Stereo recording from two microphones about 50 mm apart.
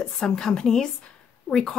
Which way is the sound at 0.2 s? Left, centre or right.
Centre.